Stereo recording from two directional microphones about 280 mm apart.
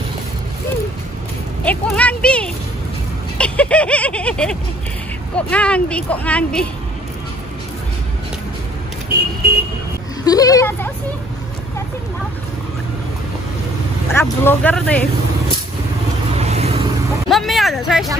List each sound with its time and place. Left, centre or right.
1.6 s speech: centre
3.3 s vehicle: centre
5.3 s speech: centre
10.2 s speech: centre
14.1 s speech: centre
16.3 s vehicle: right
17.3 s speech: centre